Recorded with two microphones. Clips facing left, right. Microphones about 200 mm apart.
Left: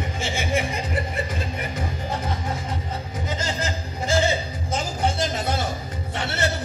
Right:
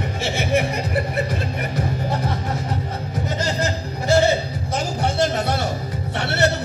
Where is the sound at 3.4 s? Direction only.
65° right (ahead or behind).